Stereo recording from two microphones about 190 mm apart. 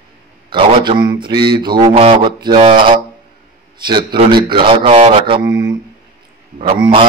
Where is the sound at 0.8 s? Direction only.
20° right (ahead or behind).